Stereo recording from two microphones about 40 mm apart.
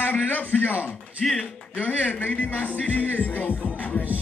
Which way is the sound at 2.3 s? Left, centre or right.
Left.